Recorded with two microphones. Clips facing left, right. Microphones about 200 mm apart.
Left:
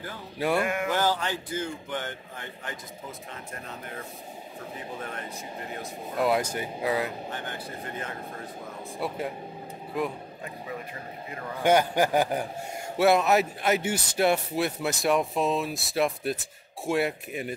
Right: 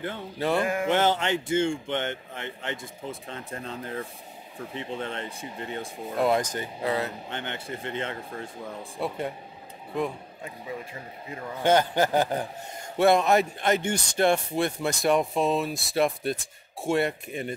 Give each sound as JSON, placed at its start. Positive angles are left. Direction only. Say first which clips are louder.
{"t": 0.4, "sound": "speech", "louder": "even", "side_deg": 10}
{"t": 0.7, "sound": "speech", "louder": "right 3 dB", "side_deg": -30}
{"t": 6.1, "sound": "speech", "louder": "right 1 dB", "side_deg": 5}
{"t": 7.2, "sound": "speech", "louder": "right 1 dB", "side_deg": -25}
{"t": 8.9, "sound": "speech", "louder": "right 1 dB", "side_deg": 0}
{"t": 11.6, "sound": "speech", "louder": "even", "side_deg": 10}